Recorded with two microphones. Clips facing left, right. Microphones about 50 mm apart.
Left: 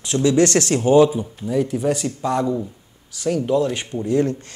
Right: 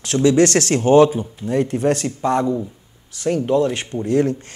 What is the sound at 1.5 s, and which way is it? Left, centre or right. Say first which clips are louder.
Speech: right 2 dB; right.